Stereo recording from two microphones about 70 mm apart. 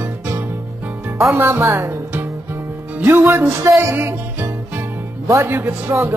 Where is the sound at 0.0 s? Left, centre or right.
Right.